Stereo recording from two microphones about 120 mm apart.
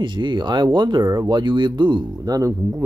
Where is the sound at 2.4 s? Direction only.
25° right (ahead or behind).